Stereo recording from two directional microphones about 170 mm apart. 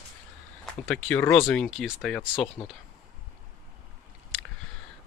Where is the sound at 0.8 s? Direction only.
5° left (ahead or behind).